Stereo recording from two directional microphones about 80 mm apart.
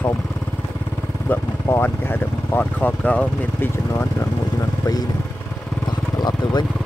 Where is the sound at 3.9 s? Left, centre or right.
Left.